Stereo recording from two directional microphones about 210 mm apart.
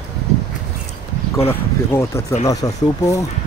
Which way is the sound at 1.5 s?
10° left (ahead or behind).